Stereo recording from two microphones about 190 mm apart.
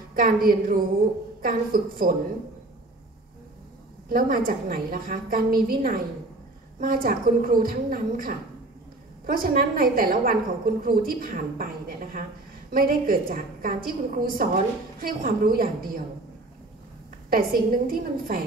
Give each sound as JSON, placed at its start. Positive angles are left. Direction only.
{"t": 0.1, "sound": "a woman's voice", "side_deg": -50}
{"t": 4.1, "sound": "a woman's voice", "side_deg": -50}
{"t": 17.3, "sound": "a woman's voice", "side_deg": -45}